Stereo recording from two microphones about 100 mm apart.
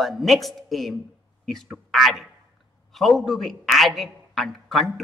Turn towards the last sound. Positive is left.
turn(degrees=0)  # may be behind; listen again after turning